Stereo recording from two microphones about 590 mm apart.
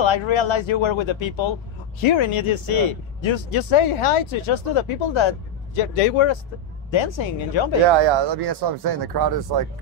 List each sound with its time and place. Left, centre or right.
0.0 s speech: left
8.0 s speech: right